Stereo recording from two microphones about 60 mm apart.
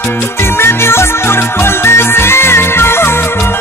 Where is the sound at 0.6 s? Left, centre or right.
Left.